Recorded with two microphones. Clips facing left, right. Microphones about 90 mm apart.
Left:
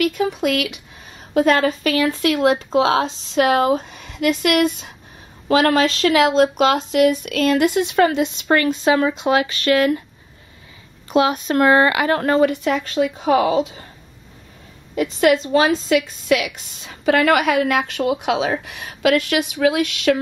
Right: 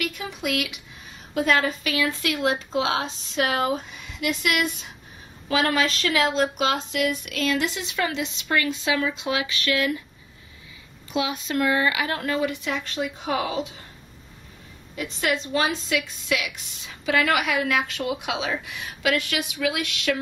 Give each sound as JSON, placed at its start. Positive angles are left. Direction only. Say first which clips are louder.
{"t": 0.0, "sound": "a woman's voice", "louder": "left 11 dB", "side_deg": 50}
{"t": 3.9, "sound": "a sound", "louder": "left 3 dB", "side_deg": 60}
{"t": 4.2, "sound": "a woman's voice", "louder": "left 8 dB", "side_deg": 45}
{"t": 5.5, "sound": "a woman's voice", "louder": "left 7 dB", "side_deg": 55}
{"t": 11.1, "sound": "a woman's voice", "louder": "left 9 dB", "side_deg": 50}
{"t": 15.0, "sound": "a woman's voice", "louder": "left 10 dB", "side_deg": 50}